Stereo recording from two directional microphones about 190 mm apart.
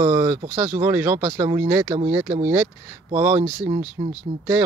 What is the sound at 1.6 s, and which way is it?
Speech, 10° right (ahead or behind).